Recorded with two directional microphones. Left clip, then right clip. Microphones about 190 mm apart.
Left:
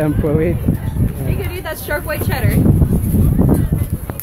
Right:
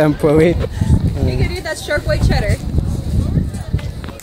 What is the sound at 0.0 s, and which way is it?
Speech, 35° right (ahead or behind).